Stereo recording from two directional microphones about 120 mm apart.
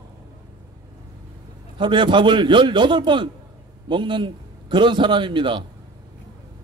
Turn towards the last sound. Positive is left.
turn(degrees=-45)  # may be behind; listen again after turning